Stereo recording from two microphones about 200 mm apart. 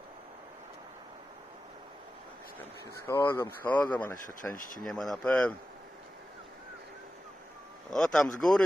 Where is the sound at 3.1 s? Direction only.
15° left (ahead or behind).